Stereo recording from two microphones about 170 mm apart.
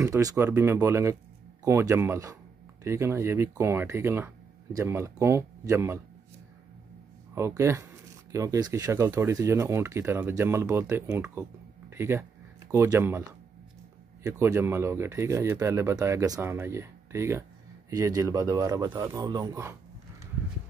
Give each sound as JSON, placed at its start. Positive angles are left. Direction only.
{"t": 0.0, "sound": "speech", "side_deg": -20}
{"t": 7.3, "sound": "speech", "side_deg": -15}
{"t": 14.2, "sound": "speech", "side_deg": -15}